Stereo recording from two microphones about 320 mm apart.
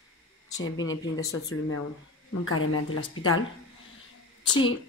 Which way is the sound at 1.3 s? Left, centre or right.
Left.